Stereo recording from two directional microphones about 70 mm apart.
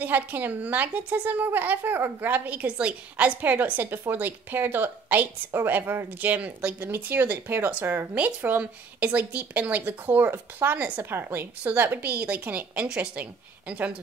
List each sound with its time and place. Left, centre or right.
0.0 s a woman's voice: right